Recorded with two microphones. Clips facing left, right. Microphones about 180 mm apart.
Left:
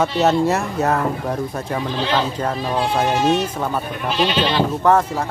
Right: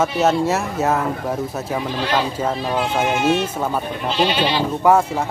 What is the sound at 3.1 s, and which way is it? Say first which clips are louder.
Speech: even; 35° left (ahead or behind).